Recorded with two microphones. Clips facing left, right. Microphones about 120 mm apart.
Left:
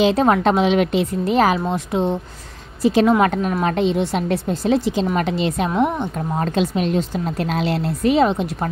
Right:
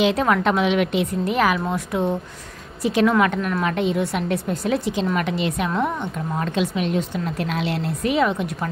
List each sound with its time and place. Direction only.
0.0 s a woman's voice: 30° left (ahead or behind)
5.7 s a woman's voice: 5° left (ahead or behind)
5.9 s speech: 35° left (ahead or behind)